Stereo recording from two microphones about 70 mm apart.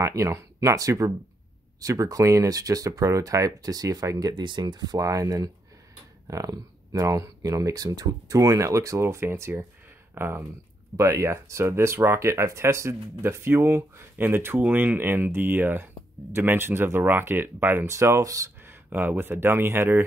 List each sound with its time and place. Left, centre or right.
0.0 s speech: right
17.8 s speech: right
18.6 s speech: right